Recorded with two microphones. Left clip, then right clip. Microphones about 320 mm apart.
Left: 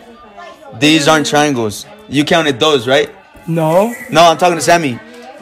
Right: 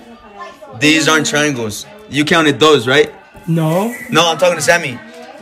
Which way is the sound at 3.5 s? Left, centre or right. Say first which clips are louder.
Left 5 dB; left.